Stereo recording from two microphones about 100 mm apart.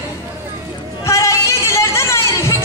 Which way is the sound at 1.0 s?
30° left (ahead or behind).